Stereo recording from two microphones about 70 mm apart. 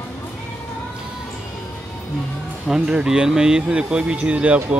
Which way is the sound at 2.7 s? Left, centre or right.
Centre.